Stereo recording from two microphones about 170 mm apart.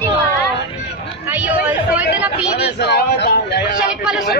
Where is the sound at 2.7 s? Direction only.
80° left.